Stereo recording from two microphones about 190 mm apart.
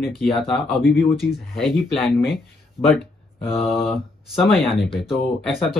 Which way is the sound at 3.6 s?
Centre (ahead or behind).